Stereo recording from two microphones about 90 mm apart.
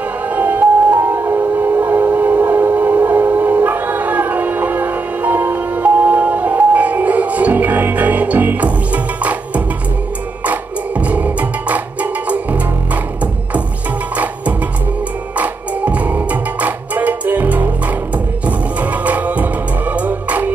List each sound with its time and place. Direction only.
0.3 s music: 20° right (ahead or behind)
10.4 s music: 15° right (ahead or behind)